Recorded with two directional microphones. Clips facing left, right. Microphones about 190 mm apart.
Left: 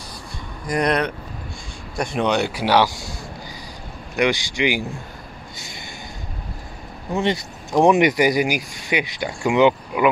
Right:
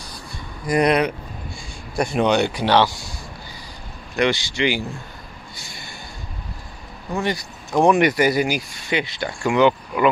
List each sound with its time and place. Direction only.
0.7 s speech: 10° right (ahead or behind); by 2.9 s 10° left (ahead or behind)
4.2 s speech: 15° left (ahead or behind)
7.2 s speech: 25° left (ahead or behind)